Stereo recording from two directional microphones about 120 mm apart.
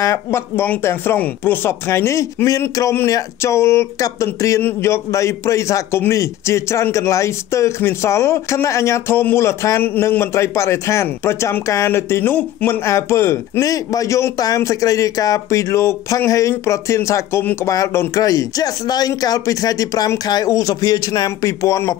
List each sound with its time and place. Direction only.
0.0 s speech: 25° left (ahead or behind)